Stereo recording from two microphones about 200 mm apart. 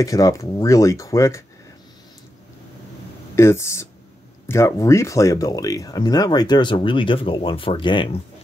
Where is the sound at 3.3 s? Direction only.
15° left (ahead or behind).